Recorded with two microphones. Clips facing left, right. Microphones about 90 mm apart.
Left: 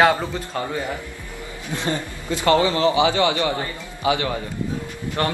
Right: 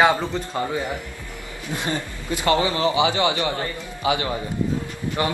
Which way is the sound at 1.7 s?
15° right (ahead or behind).